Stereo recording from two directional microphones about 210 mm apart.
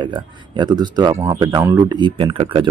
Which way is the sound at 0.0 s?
20° right (ahead or behind).